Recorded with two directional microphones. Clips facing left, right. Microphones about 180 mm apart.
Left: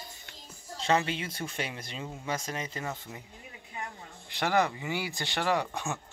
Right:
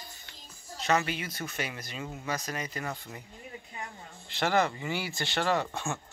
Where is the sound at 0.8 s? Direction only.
25° left (ahead or behind).